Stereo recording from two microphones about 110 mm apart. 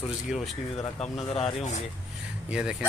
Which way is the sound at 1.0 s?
70° left (ahead or behind).